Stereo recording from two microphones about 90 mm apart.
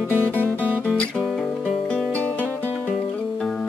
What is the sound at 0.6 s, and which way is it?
Music, 20° right (ahead or behind).